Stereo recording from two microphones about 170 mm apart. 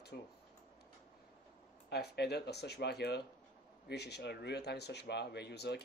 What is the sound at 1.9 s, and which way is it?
Speech, 75° left (ahead or behind).